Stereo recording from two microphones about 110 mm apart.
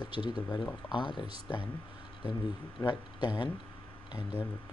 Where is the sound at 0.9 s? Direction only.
45° left (ahead or behind).